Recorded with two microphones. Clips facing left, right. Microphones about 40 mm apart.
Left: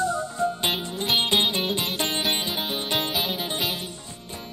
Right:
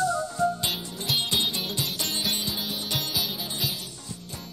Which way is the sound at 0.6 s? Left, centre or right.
Left.